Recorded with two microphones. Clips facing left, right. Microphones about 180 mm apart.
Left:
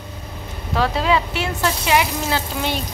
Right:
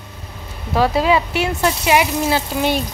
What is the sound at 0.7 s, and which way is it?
A woman's voice, 10° right (ahead or behind).